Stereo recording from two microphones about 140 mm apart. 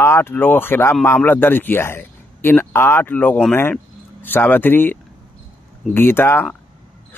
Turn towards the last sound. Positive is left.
turn(degrees=15)  # may be behind; listen again after turning